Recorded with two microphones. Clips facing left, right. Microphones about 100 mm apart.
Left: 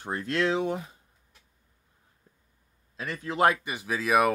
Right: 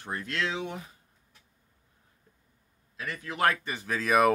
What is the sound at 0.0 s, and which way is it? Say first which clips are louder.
Speech: left 5 dB; 30° left (ahead or behind).